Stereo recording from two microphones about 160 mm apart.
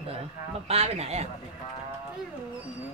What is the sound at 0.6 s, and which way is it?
Speech, 40° right (ahead or behind).